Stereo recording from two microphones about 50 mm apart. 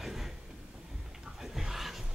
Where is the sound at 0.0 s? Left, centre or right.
Centre.